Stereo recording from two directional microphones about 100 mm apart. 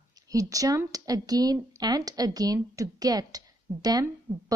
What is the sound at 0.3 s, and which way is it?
A woman's voice, 35° right (ahead or behind).